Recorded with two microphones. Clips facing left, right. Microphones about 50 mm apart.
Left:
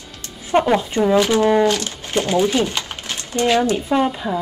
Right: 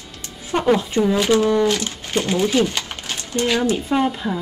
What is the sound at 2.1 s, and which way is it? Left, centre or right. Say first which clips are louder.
Speech: left 1 dB; left.